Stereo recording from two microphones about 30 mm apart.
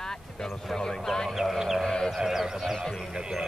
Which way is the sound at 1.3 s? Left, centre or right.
Centre.